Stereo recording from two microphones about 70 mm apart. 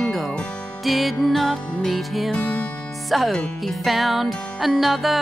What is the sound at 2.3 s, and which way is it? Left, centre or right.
Music, left.